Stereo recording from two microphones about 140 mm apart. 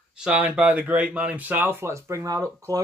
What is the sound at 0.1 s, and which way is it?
Speech, 10° right (ahead or behind).